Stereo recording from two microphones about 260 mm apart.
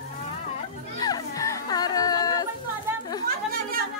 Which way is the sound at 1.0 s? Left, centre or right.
Centre.